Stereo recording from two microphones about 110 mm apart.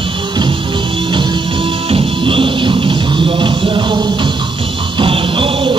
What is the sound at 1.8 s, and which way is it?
Music, 55° right (ahead or behind).